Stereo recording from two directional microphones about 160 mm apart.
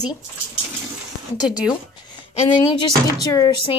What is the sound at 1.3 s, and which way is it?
Speech, 25° left (ahead or behind).